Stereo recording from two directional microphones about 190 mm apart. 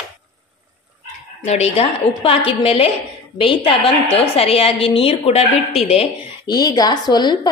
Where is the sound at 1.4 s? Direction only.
35° left (ahead or behind).